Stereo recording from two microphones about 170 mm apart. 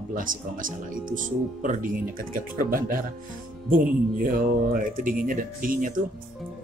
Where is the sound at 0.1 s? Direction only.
55° right (ahead or behind).